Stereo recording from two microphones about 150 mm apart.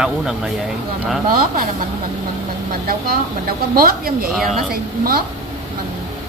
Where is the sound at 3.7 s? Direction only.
80° right.